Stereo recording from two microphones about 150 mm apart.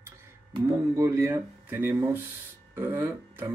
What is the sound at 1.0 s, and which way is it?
Speech, 20° right (ahead or behind).